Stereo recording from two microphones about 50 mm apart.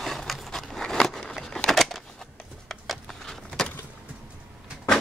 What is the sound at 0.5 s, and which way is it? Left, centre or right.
Scissors, centre.